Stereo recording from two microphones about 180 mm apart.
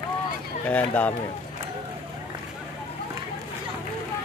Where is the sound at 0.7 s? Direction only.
10° left (ahead or behind).